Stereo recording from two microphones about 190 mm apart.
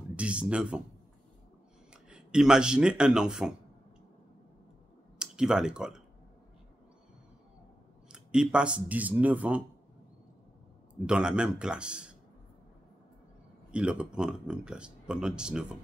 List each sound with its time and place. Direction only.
0.1 s speech: 5° right (ahead or behind)
2.0 s speech: 5° right (ahead or behind)
5.2 s speech: 5° right (ahead or behind)
8.1 s speech: 5° right (ahead or behind)
11.1 s speech: 5° right (ahead or behind)
13.7 s speech: 5° right (ahead or behind)